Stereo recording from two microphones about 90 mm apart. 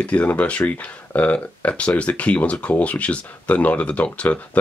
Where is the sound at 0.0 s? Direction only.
15° left (ahead or behind).